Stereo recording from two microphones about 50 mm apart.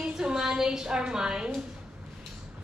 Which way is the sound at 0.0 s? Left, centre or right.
Centre.